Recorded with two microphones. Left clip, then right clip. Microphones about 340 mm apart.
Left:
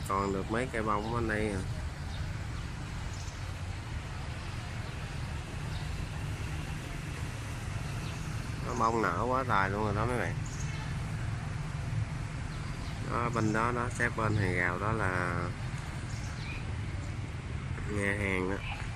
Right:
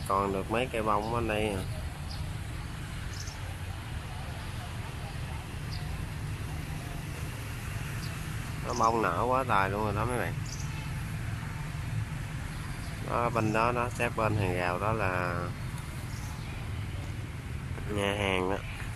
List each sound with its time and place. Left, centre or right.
0.1 s speech: centre
8.7 s speech: centre
13.1 s speech: centre
18.2 s speech: centre